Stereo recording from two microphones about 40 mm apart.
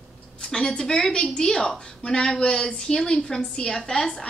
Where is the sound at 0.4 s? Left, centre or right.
Centre.